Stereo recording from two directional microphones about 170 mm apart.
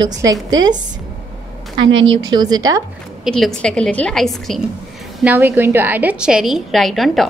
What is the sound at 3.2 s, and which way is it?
A woman's voice, centre (ahead or behind).